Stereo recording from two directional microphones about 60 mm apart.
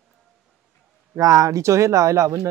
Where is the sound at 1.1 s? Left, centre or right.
Right.